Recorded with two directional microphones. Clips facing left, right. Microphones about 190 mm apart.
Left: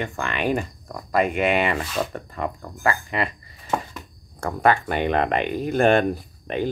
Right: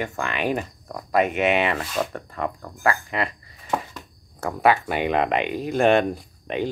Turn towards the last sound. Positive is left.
turn(degrees=0)  # may be behind; listen again after turning